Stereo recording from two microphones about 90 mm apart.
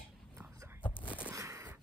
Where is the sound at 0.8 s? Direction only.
20° left (ahead or behind).